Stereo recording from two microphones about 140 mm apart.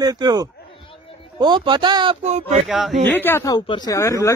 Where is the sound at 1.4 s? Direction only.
30° right (ahead or behind).